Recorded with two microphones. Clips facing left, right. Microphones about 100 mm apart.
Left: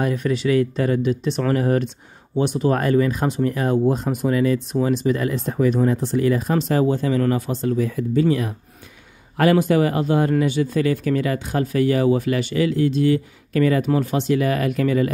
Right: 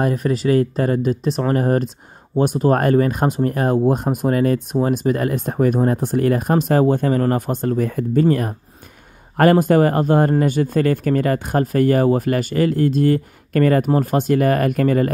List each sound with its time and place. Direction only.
0.0 s speech: 40° right (ahead or behind)